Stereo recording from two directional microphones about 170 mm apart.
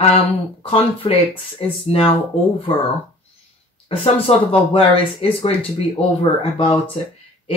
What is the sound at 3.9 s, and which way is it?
Speech, 35° left (ahead or behind).